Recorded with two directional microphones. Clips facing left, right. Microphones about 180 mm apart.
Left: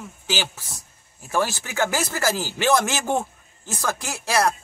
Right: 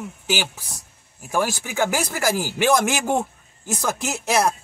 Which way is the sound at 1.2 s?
15° right (ahead or behind).